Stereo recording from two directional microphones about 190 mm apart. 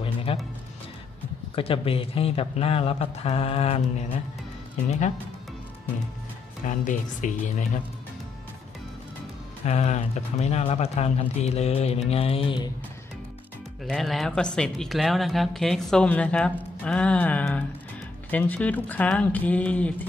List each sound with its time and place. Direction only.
0.0 s music: 30° left (ahead or behind)
1.5 s speech: 30° left (ahead or behind)
4.8 s speech: 35° left (ahead or behind)
6.6 s speech: 45° left (ahead or behind)
9.7 s speech: 35° left (ahead or behind)
13.8 s speech: centre (ahead or behind)